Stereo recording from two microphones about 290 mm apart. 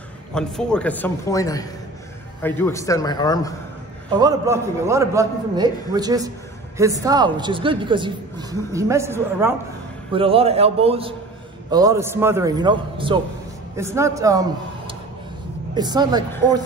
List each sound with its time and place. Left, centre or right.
0.3 s a man's voice: centre
4.2 s a man's voice: centre
10.1 s a man's voice: centre